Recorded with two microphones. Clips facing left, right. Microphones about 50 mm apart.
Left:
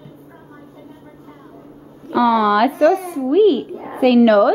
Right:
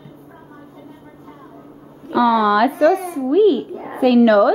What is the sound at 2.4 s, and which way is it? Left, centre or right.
Speech, left.